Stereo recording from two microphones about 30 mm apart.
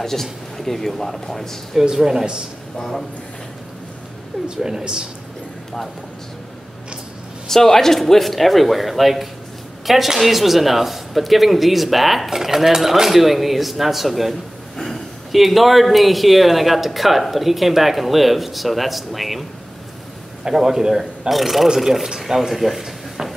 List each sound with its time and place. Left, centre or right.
0.0 s speech: centre
2.0 s a man's voice: centre
4.6 s a woman's voice: right
7.4 s speech: centre
12.3 s a man's voice: centre
15.3 s speech: centre
20.4 s a man's voice: centre
21.3 s a man's voice: centre